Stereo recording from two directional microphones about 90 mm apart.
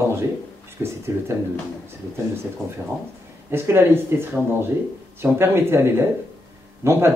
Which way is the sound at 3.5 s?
25° right (ahead or behind).